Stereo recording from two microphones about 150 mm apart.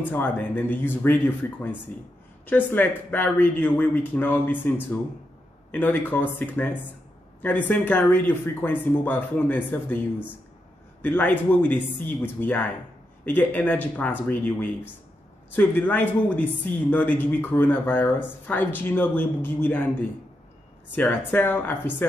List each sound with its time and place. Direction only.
0.1 s speech: 10° left (ahead or behind)
11.0 s speech: 10° left (ahead or behind)